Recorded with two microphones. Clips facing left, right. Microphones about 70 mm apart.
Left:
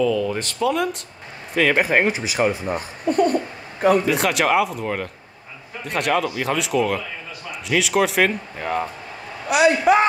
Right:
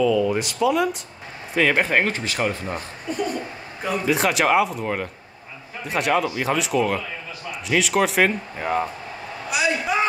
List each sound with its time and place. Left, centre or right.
0.2 s speech: centre
3.1 s a child's voice: left
4.0 s speech: centre
9.5 s a sound: left